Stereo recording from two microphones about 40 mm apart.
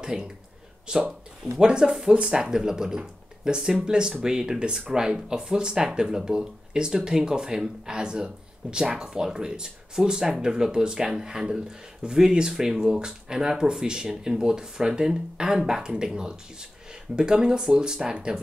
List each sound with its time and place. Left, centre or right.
0.0 s a man's voice: centre